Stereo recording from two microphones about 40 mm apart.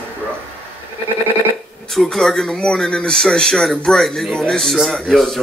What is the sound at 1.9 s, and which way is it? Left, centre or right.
A man's voice, centre.